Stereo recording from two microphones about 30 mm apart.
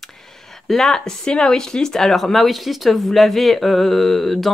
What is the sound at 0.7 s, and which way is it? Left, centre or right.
Speech, centre.